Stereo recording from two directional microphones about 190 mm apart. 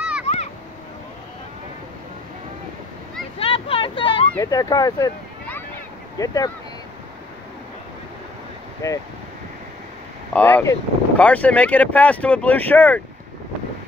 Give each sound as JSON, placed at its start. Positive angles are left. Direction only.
{"t": 3.3, "sound": "a sound", "side_deg": 30}
{"t": 4.4, "sound": "a child's voice", "side_deg": 20}
{"t": 8.8, "sound": "speech", "side_deg": 15}
{"t": 10.3, "sound": "speech", "side_deg": 10}